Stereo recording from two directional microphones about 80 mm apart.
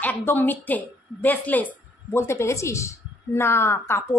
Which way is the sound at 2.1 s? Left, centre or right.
Left.